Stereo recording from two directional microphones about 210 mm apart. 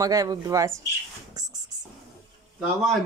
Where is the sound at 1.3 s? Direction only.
20° right (ahead or behind).